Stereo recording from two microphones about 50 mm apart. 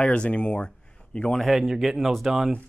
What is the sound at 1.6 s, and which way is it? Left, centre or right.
Speech, centre.